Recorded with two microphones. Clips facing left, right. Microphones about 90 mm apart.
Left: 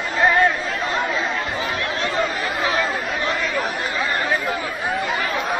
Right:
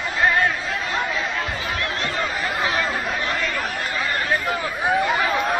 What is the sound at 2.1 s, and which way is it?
Chatter, 20° left (ahead or behind).